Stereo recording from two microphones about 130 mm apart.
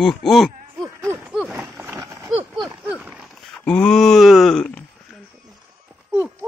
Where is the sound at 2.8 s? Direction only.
10° right (ahead or behind).